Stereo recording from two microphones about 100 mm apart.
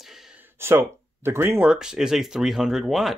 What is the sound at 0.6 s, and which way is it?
Speech, 25° right (ahead or behind).